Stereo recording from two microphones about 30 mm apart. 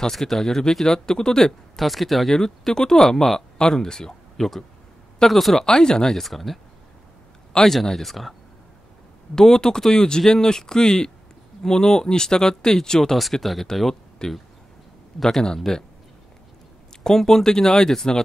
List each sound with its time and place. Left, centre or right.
0.1 s speech: centre
0.8 s speech: left
1.8 s speech: centre
2.3 s speech: centre
5.3 s speech: centre
5.6 s speech: left
6.2 s speech: centre
7.6 s speech: centre
8.0 s speech: centre
9.3 s speech: left
13.1 s speech: centre
14.2 s speech: left
15.4 s speech: centre
17.0 s speech: centre